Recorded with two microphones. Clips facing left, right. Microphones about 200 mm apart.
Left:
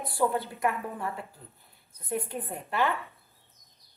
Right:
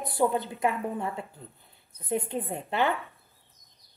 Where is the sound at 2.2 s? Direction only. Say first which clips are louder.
Right 4 dB; 20° right (ahead or behind).